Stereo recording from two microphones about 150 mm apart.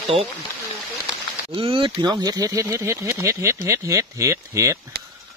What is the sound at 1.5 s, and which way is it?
Speech, 35° right (ahead or behind).